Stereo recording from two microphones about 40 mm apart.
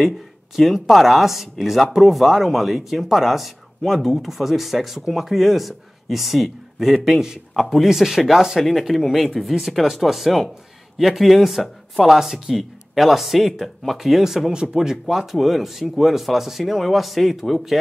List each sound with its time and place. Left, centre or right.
0.6 s speech: centre
8.5 s speech: centre
14.5 s speech: right
14.8 s speech: centre